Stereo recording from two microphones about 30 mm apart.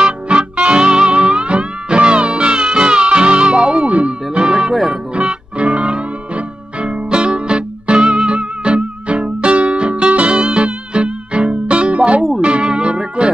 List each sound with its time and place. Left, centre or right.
0.0 s music: right
5.1 s music: right